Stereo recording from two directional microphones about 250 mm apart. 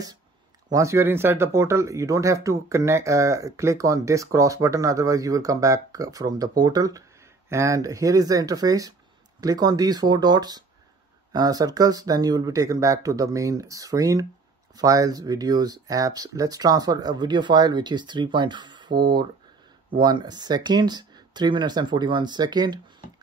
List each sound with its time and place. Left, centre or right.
0.7 s speech: centre